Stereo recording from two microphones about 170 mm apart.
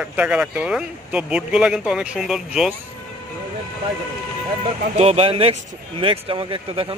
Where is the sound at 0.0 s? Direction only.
5° right (ahead or behind).